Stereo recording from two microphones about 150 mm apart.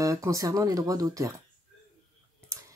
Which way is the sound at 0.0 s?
20° right (ahead or behind).